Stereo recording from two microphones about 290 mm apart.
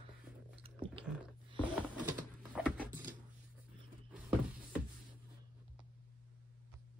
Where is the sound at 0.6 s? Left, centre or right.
Centre.